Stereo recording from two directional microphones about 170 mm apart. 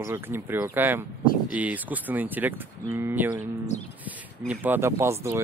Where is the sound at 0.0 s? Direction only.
15° right (ahead or behind).